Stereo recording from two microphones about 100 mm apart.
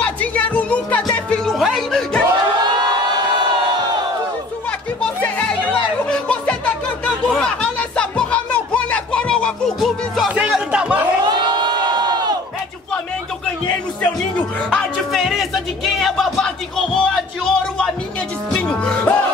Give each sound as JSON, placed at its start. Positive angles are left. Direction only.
{"t": 0.0, "sound": "music", "side_deg": 15}
{"t": 6.0, "sound": "music", "side_deg": 10}
{"t": 10.7, "sound": "chatter", "side_deg": -15}
{"t": 11.2, "sound": "crowd", "side_deg": -45}
{"t": 14.7, "sound": "music", "side_deg": 5}